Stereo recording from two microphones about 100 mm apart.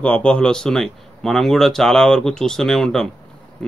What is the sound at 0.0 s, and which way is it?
Speech, 10° left (ahead or behind).